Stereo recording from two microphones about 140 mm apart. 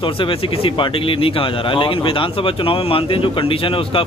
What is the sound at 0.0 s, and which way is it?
Speech, 40° left (ahead or behind).